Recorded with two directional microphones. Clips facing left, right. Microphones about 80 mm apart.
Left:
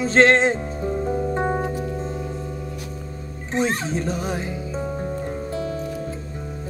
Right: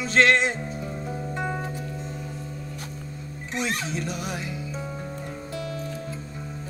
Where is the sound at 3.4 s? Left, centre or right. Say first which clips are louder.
Left 6 dB; left.